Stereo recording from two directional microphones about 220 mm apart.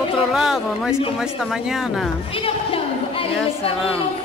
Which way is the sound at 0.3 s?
Centre (ahead or behind).